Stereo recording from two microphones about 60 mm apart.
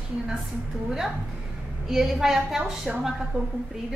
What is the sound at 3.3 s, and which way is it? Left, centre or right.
Speech, right.